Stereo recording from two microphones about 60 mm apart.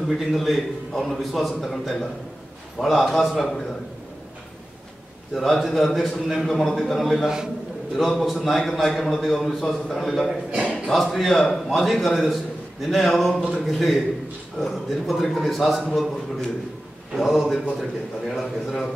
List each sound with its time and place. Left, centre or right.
0.2 s a man's voice: centre
5.3 s a man's voice: centre
10.5 s speech: centre
10.9 s a man's voice: centre